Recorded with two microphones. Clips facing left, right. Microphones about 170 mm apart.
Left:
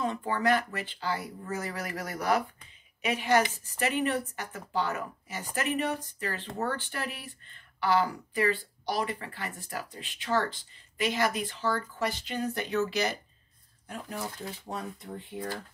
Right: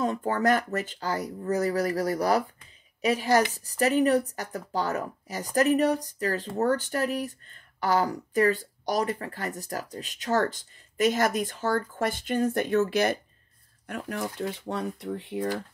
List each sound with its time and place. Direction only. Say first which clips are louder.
0.0 s speech: right 4 dB; 45° right (ahead or behind)
13.8 s speech: right 5 dB; 65° right (ahead or behind)